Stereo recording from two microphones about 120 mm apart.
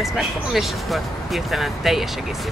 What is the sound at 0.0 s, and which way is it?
Speech, centre (ahead or behind).